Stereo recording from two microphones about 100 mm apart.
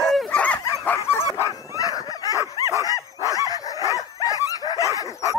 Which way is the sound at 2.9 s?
35° left (ahead or behind).